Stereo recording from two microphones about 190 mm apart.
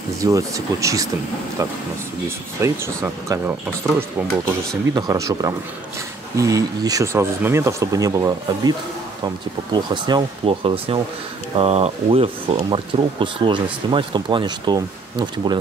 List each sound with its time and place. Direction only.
0.2 s speech: 15° right (ahead or behind)
4.9 s speech: 20° right (ahead or behind)